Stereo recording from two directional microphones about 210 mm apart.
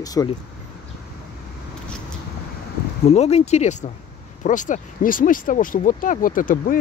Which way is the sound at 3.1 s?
30° left (ahead or behind).